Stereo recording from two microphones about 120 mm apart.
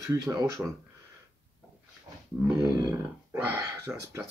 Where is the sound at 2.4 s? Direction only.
30° right (ahead or behind).